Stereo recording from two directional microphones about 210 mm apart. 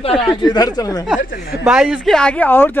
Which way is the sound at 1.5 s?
10° right (ahead or behind).